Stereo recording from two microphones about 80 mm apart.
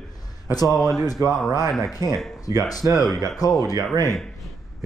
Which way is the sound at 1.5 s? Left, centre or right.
Left.